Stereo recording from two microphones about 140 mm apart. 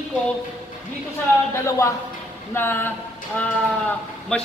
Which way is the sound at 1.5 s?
20° left (ahead or behind).